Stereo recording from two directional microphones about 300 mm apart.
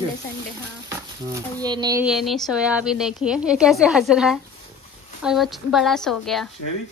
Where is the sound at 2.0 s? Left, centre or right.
Centre.